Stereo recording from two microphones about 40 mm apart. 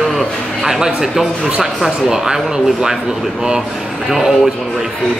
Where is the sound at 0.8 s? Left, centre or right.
Centre.